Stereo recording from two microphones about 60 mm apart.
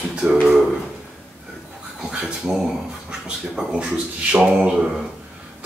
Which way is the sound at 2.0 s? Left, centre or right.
Centre.